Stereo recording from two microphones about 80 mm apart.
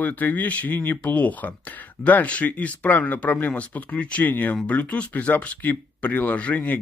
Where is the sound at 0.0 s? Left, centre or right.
Left.